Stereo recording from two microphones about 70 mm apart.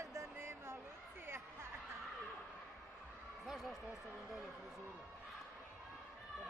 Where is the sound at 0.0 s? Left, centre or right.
Right.